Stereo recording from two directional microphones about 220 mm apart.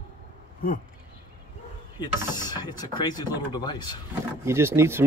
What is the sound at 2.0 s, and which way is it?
Speech, 20° left (ahead or behind).